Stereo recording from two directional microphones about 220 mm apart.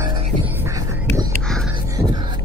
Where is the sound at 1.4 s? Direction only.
Centre (ahead or behind).